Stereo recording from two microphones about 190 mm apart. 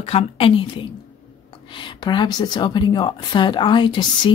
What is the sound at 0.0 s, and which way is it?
A woman's voice, 30° left (ahead or behind).